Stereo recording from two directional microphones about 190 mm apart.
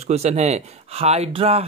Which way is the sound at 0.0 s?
35° right (ahead or behind).